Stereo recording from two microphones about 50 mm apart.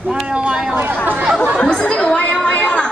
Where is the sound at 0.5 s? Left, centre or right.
Centre.